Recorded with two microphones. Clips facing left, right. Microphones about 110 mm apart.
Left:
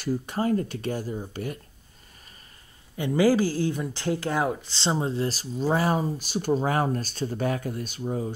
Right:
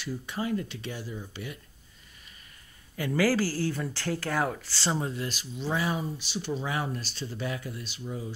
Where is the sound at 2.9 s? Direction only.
20° left (ahead or behind).